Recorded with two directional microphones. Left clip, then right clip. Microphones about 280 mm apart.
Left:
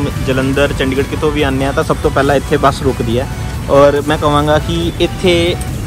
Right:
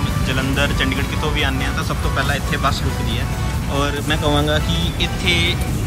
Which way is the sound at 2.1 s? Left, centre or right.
Left.